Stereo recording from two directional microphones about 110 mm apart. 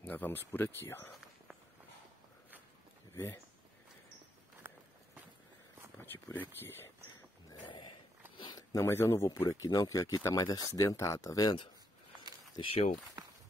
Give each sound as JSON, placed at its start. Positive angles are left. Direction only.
{"t": 0.0, "sound": "speech", "side_deg": 20}
{"t": 4.6, "sound": "walk", "side_deg": -20}
{"t": 5.9, "sound": "speech", "side_deg": 20}
{"t": 8.4, "sound": "a sound", "side_deg": 40}
{"t": 8.7, "sound": "speech", "side_deg": 25}
{"t": 12.5, "sound": "speech", "side_deg": 60}